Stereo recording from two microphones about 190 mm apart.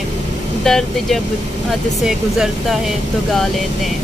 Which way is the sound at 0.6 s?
Centre (ahead or behind).